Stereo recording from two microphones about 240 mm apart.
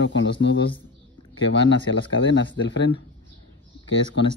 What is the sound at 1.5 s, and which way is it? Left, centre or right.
Speech, left.